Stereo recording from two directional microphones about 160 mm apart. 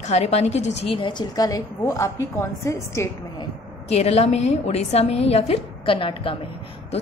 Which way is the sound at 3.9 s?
40° left (ahead or behind).